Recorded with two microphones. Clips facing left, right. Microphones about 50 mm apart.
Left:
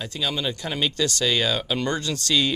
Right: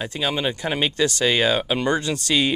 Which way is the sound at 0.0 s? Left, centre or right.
Right.